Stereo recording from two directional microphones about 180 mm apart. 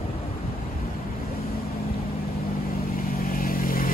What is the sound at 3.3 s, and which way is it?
Vehicle, 50° left (ahead or behind).